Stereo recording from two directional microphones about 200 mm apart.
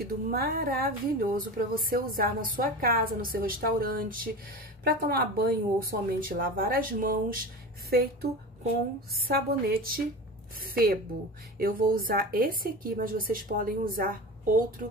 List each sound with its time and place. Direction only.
0.0 s speech: 50° right (ahead or behind)